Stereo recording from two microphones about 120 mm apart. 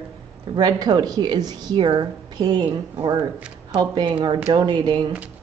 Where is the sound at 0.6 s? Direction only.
35° right (ahead or behind).